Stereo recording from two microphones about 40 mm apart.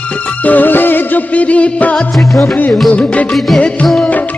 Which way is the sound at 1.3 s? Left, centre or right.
Left.